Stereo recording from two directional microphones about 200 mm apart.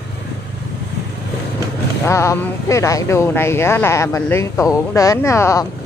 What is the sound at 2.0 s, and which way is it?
Speech, 15° left (ahead or behind).